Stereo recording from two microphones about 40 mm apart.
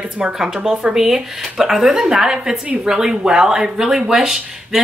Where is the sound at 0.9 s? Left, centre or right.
Centre.